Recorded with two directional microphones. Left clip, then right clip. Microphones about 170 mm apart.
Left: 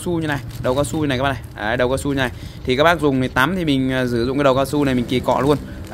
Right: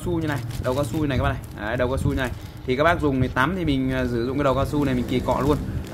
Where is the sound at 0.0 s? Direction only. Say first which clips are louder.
Left 4 dB; 50° left (ahead or behind).